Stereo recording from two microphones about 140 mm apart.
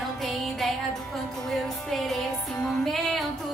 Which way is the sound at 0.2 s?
Centre (ahead or behind).